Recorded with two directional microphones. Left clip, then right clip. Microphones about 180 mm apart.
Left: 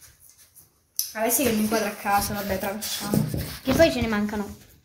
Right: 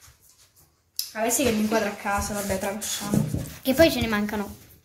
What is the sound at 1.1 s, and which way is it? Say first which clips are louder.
A woman's voice: even; centre (ahead or behind).